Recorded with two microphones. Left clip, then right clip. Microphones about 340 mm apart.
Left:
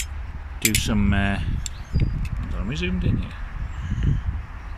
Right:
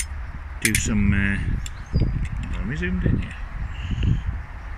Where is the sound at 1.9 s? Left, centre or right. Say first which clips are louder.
Right 3 dB; right.